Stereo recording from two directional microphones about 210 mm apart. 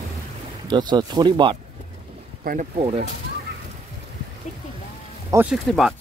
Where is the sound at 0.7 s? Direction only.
20° right (ahead or behind).